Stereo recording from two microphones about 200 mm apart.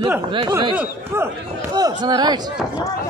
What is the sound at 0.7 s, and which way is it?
Speech, 10° right (ahead or behind).